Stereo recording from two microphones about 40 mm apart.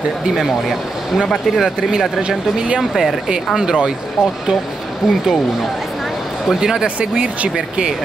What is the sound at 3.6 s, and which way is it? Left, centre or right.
Speech, centre.